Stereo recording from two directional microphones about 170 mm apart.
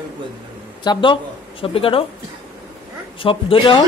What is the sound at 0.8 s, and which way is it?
Speech, 30° left (ahead or behind).